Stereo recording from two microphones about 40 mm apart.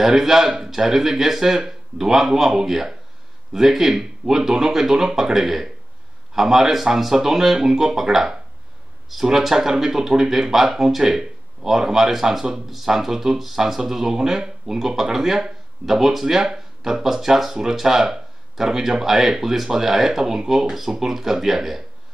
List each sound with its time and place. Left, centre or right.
0.0 s speech: centre